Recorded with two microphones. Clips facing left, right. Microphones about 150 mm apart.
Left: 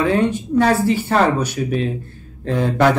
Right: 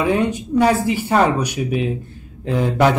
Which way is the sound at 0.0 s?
15° right (ahead or behind).